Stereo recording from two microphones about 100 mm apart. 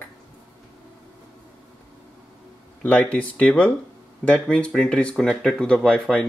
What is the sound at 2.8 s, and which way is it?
Speech, 10° left (ahead or behind).